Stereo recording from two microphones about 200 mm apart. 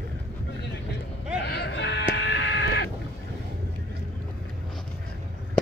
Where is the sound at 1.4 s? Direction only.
55° left (ahead or behind).